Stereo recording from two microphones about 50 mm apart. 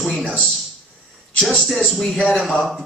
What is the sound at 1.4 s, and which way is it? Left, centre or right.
A man's voice, centre.